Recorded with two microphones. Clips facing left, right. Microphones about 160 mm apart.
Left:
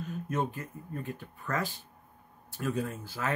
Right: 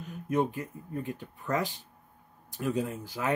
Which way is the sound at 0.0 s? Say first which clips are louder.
Right 4 dB; 15° right (ahead or behind).